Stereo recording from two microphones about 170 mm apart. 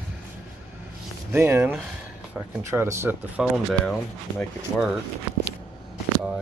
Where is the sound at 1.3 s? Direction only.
10° right (ahead or behind).